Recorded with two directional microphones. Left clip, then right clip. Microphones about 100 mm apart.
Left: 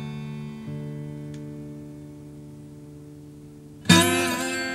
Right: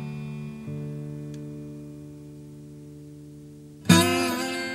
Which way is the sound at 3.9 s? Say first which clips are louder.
Even; 20° right (ahead or behind).